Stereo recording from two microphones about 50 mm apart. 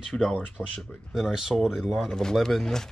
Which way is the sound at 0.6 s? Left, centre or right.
Centre.